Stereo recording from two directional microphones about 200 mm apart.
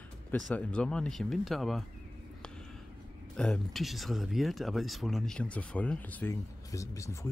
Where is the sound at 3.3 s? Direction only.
5° left (ahead or behind).